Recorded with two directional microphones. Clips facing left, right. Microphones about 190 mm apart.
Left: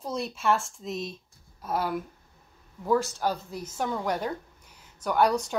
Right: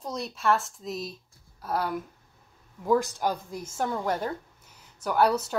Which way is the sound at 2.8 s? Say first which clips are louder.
Right 1 dB; 15° right (ahead or behind).